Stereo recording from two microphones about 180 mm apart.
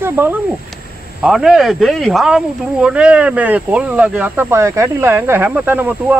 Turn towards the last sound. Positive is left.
turn(degrees=-10)  # may be behind; listen again after turning